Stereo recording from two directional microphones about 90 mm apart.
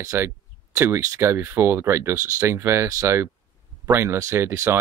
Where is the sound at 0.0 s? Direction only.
30° right (ahead or behind).